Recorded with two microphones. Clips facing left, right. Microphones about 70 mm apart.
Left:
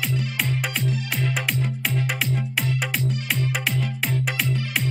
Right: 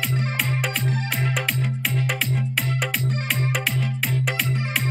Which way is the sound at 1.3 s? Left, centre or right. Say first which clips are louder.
Even; centre.